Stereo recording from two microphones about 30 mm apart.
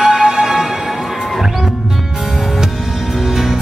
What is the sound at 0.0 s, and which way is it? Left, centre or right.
Music, centre.